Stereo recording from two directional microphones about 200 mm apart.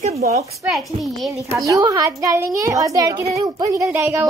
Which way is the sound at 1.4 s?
15° right (ahead or behind).